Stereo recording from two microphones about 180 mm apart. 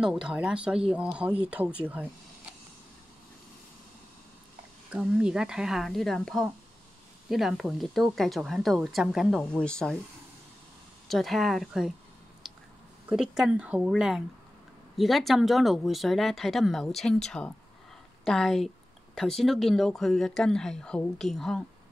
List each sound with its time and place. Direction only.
0.0 s speech: 5° right (ahead or behind)
4.9 s speech: 5° right (ahead or behind)
11.1 s speech: centre (ahead or behind)
12.4 s a sound: centre (ahead or behind)
13.1 s speech: 5° right (ahead or behind)